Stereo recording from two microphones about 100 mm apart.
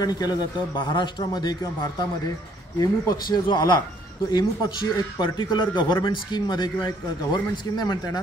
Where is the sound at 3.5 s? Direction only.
50° left (ahead or behind).